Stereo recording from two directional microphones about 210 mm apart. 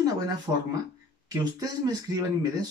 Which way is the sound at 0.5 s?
10° right (ahead or behind).